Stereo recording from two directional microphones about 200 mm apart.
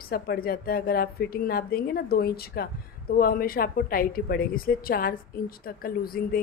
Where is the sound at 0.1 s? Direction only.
50° left (ahead or behind).